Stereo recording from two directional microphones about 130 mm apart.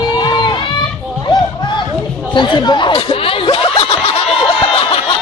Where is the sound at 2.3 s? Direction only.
35° left (ahead or behind).